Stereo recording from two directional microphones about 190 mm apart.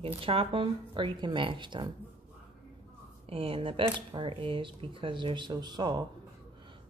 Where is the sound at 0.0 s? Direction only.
30° right (ahead or behind).